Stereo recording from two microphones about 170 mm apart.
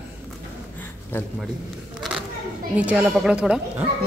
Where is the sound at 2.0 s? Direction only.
Centre (ahead or behind).